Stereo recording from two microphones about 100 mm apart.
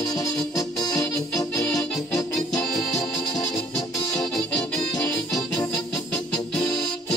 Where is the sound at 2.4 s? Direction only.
5° left (ahead or behind).